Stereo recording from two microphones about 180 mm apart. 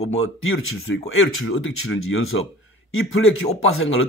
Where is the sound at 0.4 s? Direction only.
90° left.